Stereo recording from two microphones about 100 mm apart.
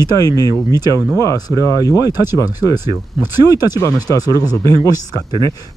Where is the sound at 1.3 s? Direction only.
35° right (ahead or behind).